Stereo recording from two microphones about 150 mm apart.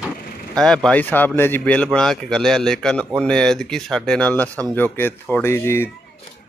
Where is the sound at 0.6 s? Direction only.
5° left (ahead or behind).